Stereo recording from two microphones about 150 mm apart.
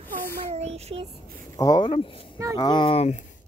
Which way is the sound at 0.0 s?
15° left (ahead or behind).